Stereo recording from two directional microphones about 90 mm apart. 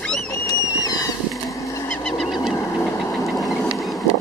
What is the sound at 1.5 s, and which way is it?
Goose, 35° left (ahead or behind).